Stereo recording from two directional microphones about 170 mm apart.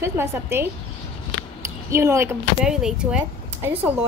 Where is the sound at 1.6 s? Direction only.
15° right (ahead or behind).